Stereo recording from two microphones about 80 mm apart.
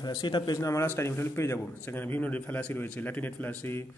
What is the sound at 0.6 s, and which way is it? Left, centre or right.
A man's voice, left.